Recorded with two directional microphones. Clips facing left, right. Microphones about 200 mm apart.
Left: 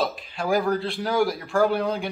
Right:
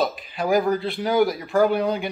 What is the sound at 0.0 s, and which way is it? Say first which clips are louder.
Speech: right 3 dB; centre (ahead or behind).